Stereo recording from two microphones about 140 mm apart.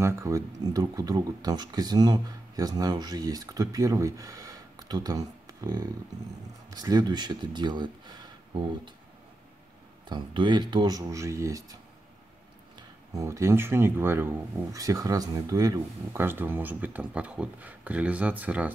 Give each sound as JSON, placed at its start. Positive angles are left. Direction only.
{"t": 0.0, "sound": "speech", "side_deg": -20}
{"t": 10.0, "sound": "speech", "side_deg": -35}
{"t": 16.2, "sound": "speech", "side_deg": -15}